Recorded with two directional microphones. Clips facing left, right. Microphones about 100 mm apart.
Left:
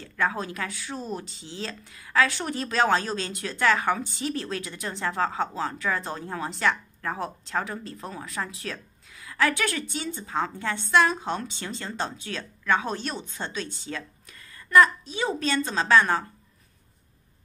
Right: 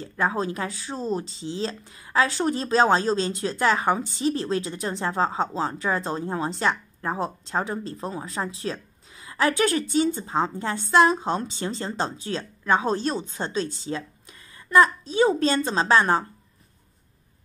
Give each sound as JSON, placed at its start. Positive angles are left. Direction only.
{"t": 0.0, "sound": "a woman's voice", "side_deg": -25}
{"t": 15.0, "sound": "a woman's voice", "side_deg": -40}
{"t": 15.6, "sound": "speech", "side_deg": -30}